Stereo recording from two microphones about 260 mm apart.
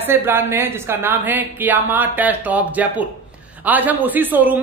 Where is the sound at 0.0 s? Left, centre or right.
Centre.